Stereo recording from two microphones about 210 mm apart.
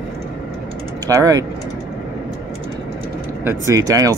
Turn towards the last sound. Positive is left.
turn(degrees=-15)  # may be behind; listen again after turning